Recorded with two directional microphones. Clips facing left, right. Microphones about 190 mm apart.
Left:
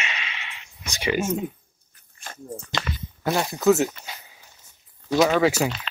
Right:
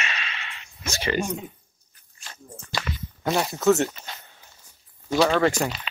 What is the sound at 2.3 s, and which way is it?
Walk, 50° left (ahead or behind).